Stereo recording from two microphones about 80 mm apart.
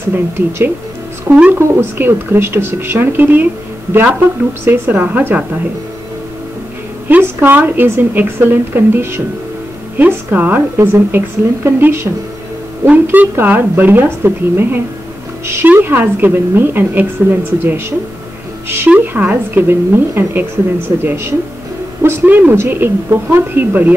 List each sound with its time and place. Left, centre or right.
0.1 s speech: right
1.3 s speech: centre
1.8 s a woman's voice: right
7.1 s a woman's voice: right
18.9 s a woman's voice: centre